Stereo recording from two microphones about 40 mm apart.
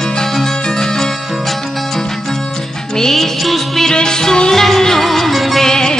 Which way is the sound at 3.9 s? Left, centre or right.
Centre.